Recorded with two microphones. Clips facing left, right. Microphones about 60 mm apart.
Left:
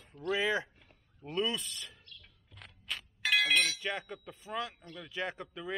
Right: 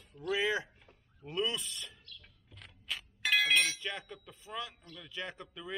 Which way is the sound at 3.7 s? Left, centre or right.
Centre.